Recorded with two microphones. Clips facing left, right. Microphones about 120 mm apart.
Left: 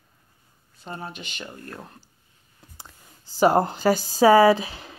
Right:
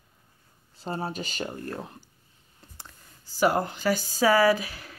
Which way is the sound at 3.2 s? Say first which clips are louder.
Left 5 dB; 25° left (ahead or behind).